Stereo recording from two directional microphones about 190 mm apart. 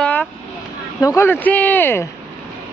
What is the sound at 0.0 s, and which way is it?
Vehicle, 10° left (ahead or behind).